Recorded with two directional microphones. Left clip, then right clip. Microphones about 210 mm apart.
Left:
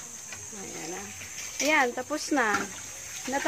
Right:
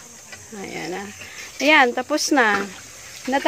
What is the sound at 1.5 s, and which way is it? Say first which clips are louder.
Speech: right 9 dB; 40° right (ahead or behind).